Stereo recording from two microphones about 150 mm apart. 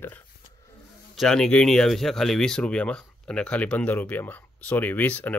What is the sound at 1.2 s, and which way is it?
Speech, 5° left (ahead or behind).